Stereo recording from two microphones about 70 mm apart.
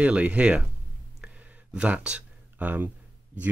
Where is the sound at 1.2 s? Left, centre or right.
Centre.